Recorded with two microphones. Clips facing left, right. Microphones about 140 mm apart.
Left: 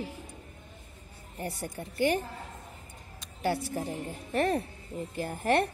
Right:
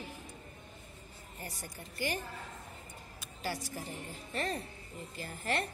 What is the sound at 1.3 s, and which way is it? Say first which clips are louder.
Speech: left 10 dB; 65° left (ahead or behind).